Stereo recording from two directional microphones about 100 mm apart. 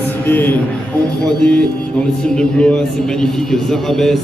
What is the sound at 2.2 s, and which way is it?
A man's voice, 10° left (ahead or behind).